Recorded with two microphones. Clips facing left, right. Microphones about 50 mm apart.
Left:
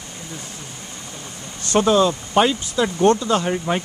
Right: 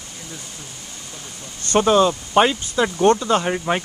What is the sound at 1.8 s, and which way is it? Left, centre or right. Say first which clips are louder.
Speech: right 1 dB; centre.